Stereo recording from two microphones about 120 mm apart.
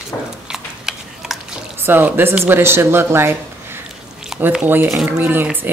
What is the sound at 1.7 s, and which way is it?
Speech, 15° right (ahead or behind).